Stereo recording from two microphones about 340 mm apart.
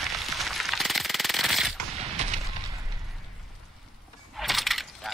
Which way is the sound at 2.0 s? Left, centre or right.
Centre.